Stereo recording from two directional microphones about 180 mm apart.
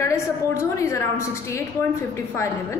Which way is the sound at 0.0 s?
15° left (ahead or behind).